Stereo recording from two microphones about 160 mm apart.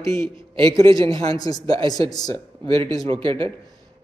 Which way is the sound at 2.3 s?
35° right (ahead or behind).